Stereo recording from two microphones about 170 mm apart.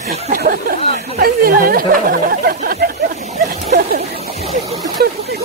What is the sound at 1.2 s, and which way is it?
Speech, 60° right (ahead or behind).